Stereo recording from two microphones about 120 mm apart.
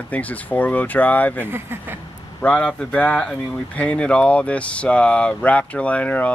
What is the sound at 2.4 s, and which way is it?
Speech, 10° left (ahead or behind).